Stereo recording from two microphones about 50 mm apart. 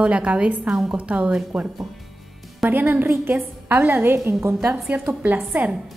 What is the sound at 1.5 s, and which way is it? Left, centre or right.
A woman's voice, centre.